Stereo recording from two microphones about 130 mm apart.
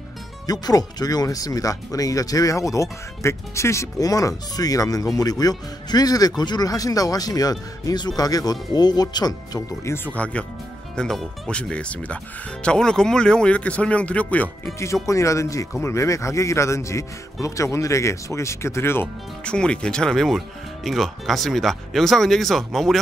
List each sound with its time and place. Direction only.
0.5 s speech: 30° left (ahead or behind)
10.0 s speech: 10° left (ahead or behind)
15.0 s speech: 25° left (ahead or behind)
19.4 s speech: 5° left (ahead or behind)